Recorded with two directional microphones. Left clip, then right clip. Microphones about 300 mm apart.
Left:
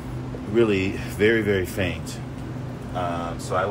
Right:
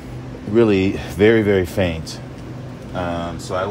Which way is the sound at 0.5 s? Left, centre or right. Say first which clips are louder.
Right 5 dB; right.